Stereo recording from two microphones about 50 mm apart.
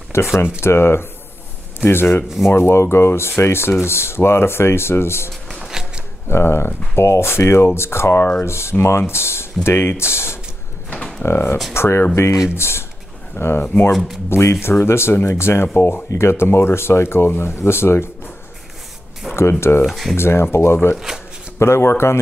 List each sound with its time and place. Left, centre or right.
0.1 s speech: left
2.2 s speech: centre
2.5 s speech: left
5.6 s a sound: centre
6.2 s speech: left
14.3 s speech: left
16.1 s speech: left
19.2 s speech: centre
20.2 s speech: left
20.9 s speech: centre
21.5 s speech: left